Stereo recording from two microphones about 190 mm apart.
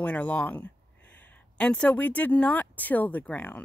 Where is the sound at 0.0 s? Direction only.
10° left (ahead or behind).